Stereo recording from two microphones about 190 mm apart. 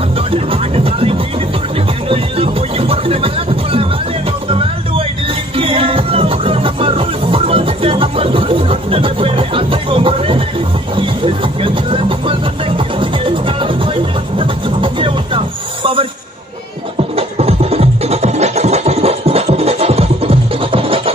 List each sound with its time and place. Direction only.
0.5 s music: 30° right (ahead or behind)
4.5 s speech: 30° right (ahead or behind)
5.6 s music: 30° right (ahead or behind)
11.6 s music: 30° right (ahead or behind)
14.4 s a sound: 25° right (ahead or behind)
17.4 s music: 30° right (ahead or behind)